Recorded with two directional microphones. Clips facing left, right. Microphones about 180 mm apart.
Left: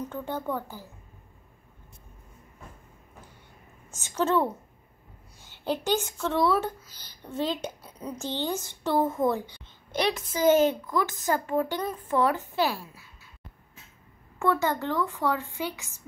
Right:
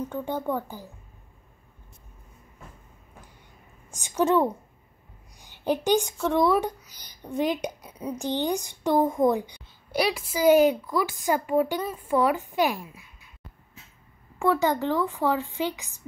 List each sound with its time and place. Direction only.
0.0 s a woman's voice: 15° right (ahead or behind)
3.9 s a woman's voice: 15° right (ahead or behind)
14.4 s a woman's voice: 15° right (ahead or behind)